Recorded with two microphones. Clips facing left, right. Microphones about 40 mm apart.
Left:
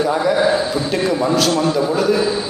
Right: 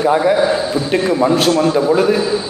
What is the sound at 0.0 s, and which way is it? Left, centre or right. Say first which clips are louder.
Speech: right 4 dB; right.